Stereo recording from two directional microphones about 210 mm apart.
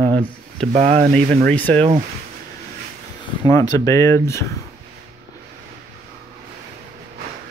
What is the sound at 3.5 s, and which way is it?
Speech, 15° left (ahead or behind).